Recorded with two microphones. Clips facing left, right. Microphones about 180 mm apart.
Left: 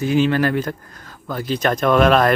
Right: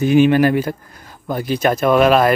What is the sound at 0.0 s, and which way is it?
Speech, 15° right (ahead or behind).